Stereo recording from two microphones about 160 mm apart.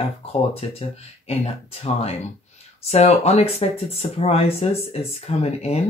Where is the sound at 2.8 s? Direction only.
40° left (ahead or behind).